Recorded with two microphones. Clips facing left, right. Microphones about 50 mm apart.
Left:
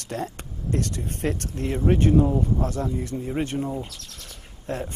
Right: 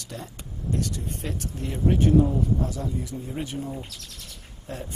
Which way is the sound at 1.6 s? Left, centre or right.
Left.